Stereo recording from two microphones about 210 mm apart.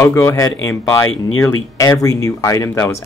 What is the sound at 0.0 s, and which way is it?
Speech, 10° left (ahead or behind).